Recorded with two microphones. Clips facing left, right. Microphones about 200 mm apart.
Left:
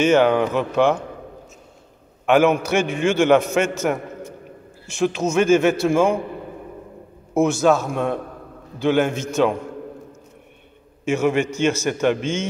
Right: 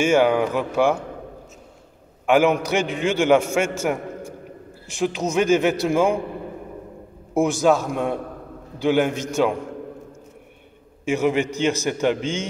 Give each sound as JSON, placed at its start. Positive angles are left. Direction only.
{"t": 0.0, "sound": "a man's voice", "side_deg": -10}
{"t": 2.2, "sound": "a man's voice", "side_deg": -15}
{"t": 7.3, "sound": "a man's voice", "side_deg": -15}
{"t": 11.1, "sound": "a man's voice", "side_deg": -15}